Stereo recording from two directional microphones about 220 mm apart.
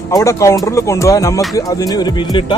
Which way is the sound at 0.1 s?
15° left (ahead or behind).